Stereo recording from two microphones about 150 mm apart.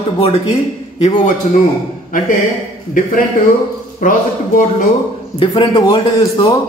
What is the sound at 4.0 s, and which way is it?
Speech, 60° left (ahead or behind).